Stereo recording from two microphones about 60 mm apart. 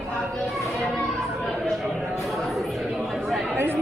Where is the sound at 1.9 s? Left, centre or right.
Centre.